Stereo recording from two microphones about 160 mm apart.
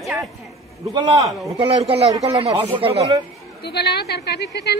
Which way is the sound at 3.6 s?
85° left.